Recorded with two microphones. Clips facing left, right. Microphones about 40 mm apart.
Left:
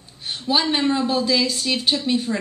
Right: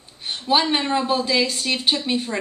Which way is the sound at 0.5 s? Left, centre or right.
Centre.